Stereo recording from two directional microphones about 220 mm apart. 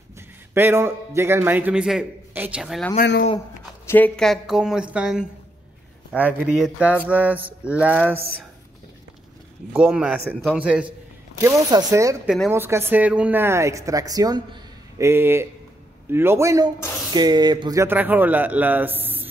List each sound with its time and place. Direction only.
0.6 s speech: 10° right (ahead or behind)
3.0 s speech: 45° left (ahead or behind)
3.8 s a woman's voice: 10° left (ahead or behind)
6.4 s speech: 5° right (ahead or behind)
9.7 s a woman's voice: 5° right (ahead or behind)